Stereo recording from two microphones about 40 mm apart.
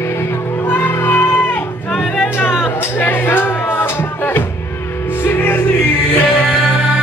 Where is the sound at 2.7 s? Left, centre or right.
Left.